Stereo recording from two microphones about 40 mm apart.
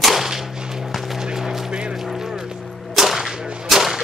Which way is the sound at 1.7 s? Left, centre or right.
Right.